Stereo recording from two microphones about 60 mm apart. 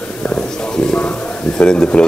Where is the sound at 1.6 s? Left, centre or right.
Centre.